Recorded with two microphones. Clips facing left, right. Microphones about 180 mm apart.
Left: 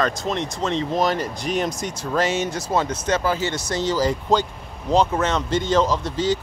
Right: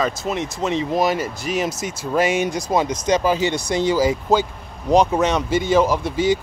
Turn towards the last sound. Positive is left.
turn(degrees=-10)  # may be behind; listen again after turning